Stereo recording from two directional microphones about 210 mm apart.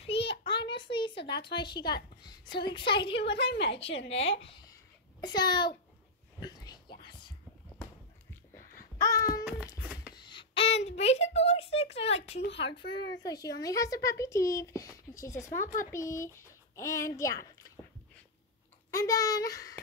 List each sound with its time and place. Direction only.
0.0 s a sound: 25° left (ahead or behind)
2.2 s a woman's voice: 20° left (ahead or behind)
3.3 s a woman's voice: 55° left (ahead or behind)
5.2 s a woman's voice: 20° left (ahead or behind)
8.9 s babbling: 15° left (ahead or behind)
9.4 s a sound: 5° right (ahead or behind)
10.1 s a sound: 20° left (ahead or behind)
12.2 s a woman's voice: 55° left (ahead or behind)
12.5 s speech: 25° left (ahead or behind)
15.6 s speech: 40° left (ahead or behind)
15.9 s speech: 15° left (ahead or behind)
18.9 s speech: 15° left (ahead or behind)